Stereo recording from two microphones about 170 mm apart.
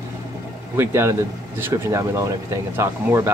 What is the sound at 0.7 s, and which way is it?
Speech, 15° right (ahead or behind).